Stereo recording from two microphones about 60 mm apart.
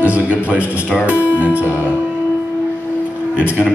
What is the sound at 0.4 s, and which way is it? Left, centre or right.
A man's voice, right.